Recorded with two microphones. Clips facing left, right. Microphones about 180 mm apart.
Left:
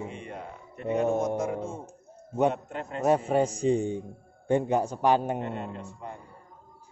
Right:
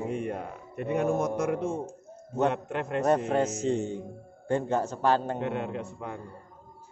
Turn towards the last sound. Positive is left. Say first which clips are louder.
# right 4 dB
turn(degrees=-70)  # may be behind; listen again after turning